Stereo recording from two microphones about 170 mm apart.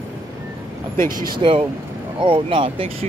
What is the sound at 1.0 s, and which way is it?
Speech, 55° right (ahead or behind).